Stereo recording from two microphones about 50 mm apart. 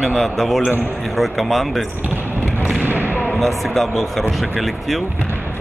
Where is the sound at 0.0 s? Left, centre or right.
Centre.